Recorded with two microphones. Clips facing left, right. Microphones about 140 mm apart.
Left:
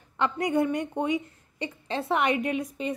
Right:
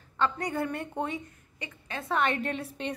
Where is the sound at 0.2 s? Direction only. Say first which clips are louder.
Left 3 dB; 20° left (ahead or behind).